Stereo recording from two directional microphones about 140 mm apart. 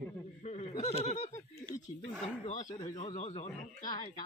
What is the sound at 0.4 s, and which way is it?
Speech, 50° left (ahead or behind).